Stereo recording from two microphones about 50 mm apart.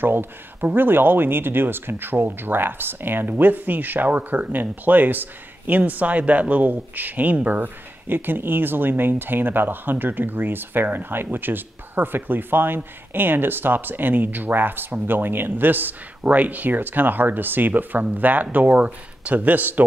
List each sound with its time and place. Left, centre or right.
0.0 s speech: right